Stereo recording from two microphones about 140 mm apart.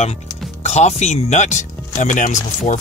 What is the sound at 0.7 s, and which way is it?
Speech, 55° left (ahead or behind).